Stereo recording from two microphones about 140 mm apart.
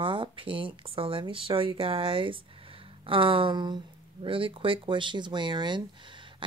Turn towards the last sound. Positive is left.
turn(degrees=-35)  # may be behind; listen again after turning